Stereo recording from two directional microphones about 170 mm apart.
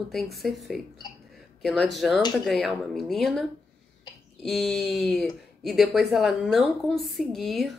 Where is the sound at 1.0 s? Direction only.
25° left (ahead or behind).